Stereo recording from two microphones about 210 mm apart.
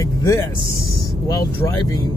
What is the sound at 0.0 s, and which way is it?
Speech, 15° left (ahead or behind).